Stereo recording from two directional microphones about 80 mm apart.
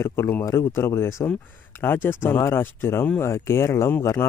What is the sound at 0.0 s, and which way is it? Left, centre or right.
A man's voice, left.